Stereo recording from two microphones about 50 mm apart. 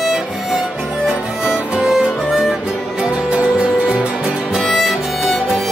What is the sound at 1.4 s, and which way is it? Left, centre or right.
Music, centre.